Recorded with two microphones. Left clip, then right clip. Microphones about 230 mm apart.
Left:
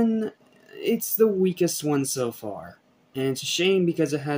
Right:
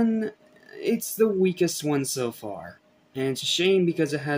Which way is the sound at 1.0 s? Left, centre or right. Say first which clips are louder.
Left 1 dB; centre.